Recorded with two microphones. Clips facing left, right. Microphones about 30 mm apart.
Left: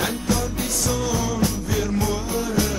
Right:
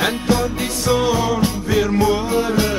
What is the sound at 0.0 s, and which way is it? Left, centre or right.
Music, right.